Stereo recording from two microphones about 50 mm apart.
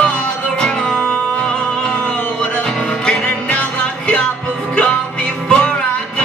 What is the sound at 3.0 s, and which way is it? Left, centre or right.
Music, centre.